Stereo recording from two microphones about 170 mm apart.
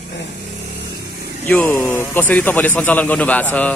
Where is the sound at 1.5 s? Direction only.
10° left (ahead or behind).